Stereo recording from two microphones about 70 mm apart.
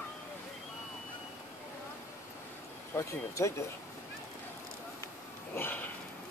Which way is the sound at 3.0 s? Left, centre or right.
Left.